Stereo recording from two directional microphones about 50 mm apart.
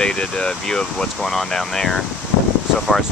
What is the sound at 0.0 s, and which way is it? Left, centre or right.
Speech, centre.